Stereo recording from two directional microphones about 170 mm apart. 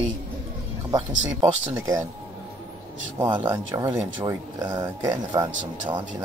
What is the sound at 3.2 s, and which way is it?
Speech, 25° right (ahead or behind).